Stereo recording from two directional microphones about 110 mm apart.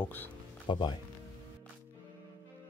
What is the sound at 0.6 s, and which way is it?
Speech, 45° left (ahead or behind).